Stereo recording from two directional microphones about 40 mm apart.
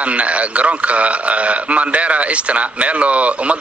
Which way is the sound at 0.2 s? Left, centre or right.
Right.